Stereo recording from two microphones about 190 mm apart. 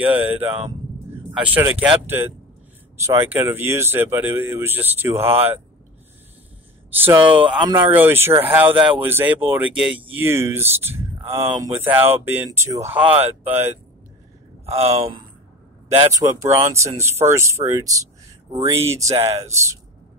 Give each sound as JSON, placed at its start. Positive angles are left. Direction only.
{"t": 0.0, "sound": "speech", "side_deg": -10}
{"t": 6.9, "sound": "speech", "side_deg": -10}
{"t": 14.7, "sound": "speech", "side_deg": -30}
{"t": 16.1, "sound": "speech", "side_deg": -20}